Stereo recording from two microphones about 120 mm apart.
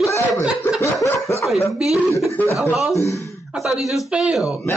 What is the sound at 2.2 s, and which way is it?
Speech, 20° left (ahead or behind).